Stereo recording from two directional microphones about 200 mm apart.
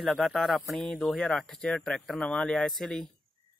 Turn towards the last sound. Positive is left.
turn(degrees=0)  # may be behind; listen again after turning